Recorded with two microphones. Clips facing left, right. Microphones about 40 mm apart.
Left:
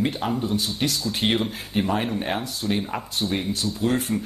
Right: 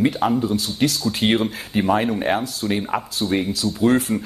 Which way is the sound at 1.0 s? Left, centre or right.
Right.